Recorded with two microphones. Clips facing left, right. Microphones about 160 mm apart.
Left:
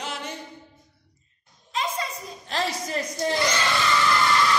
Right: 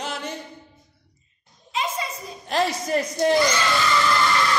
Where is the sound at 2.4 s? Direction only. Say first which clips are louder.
Right 5 dB; 55° right (ahead or behind).